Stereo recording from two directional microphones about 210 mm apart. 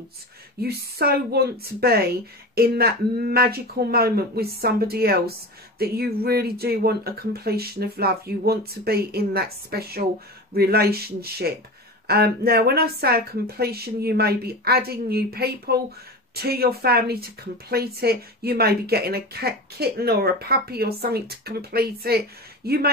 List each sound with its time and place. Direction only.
0.6 s a woman's voice: 50° right (ahead or behind)